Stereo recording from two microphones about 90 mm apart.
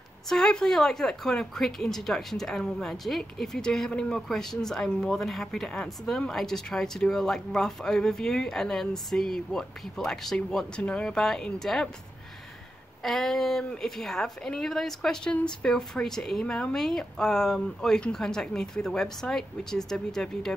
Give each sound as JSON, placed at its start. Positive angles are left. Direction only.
{"t": 0.3, "sound": "a woman's voice", "side_deg": 5}
{"t": 13.0, "sound": "a woman's voice", "side_deg": 5}